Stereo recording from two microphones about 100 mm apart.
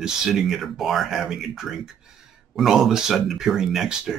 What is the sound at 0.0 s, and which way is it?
Speech, 5° right (ahead or behind).